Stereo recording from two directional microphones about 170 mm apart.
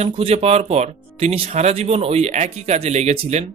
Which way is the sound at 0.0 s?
40° right (ahead or behind).